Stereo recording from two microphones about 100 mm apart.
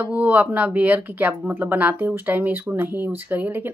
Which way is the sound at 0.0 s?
15° right (ahead or behind).